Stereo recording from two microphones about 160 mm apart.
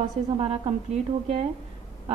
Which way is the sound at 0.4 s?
40° right (ahead or behind).